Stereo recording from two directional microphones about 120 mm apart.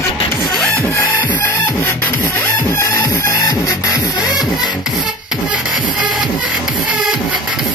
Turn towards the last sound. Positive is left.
turn(degrees=-10)  # may be behind; listen again after turning